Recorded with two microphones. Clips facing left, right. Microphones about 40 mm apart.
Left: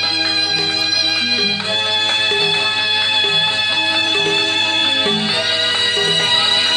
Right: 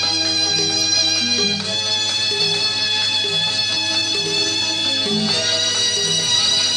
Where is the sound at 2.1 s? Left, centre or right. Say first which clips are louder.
Left 5 dB; left.